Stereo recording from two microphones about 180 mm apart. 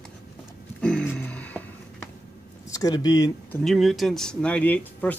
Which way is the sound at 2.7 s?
20° left (ahead or behind).